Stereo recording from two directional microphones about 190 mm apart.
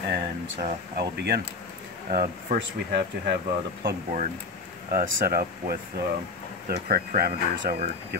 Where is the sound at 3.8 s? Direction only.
40° right (ahead or behind).